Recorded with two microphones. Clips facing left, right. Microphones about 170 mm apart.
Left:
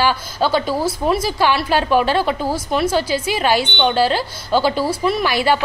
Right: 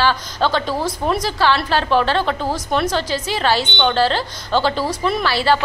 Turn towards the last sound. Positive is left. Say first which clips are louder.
# left 1 dB
turn(degrees=15)  # may be behind; listen again after turning